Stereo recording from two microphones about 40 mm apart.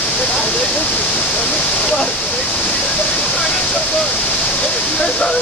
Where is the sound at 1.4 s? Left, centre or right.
Left.